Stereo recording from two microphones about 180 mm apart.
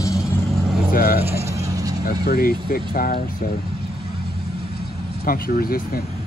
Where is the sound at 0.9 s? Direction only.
55° left (ahead or behind).